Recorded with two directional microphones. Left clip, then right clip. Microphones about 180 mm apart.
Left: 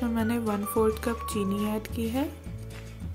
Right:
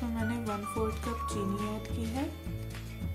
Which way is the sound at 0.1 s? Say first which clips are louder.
Left 6 dB; 40° left (ahead or behind).